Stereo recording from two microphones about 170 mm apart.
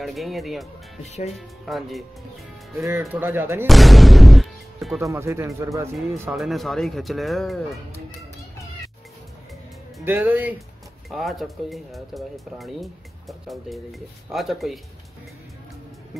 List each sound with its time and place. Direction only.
0.0 s speech: centre (ahead or behind)
1.0 s speech: 40° left (ahead or behind)
1.3 s speech: centre (ahead or behind)
2.8 s speech: 15° right (ahead or behind)
3.6 s speech: centre (ahead or behind)
5.0 s speech: 15° right (ahead or behind)
6.3 s speech: centre (ahead or behind)
10.0 s speech: 10° right (ahead or behind)
11.1 s speech: centre (ahead or behind)